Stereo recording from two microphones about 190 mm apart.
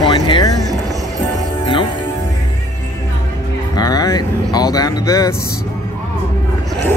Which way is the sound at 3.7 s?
20° left (ahead or behind).